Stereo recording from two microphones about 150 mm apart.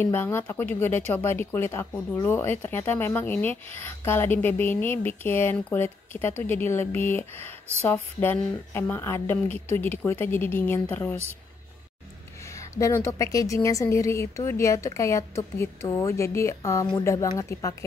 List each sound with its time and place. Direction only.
0.0 s speech: 15° left (ahead or behind)
12.4 s a woman's voice: 20° left (ahead or behind)